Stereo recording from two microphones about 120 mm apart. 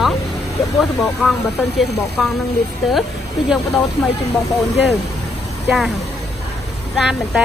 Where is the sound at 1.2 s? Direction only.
10° right (ahead or behind).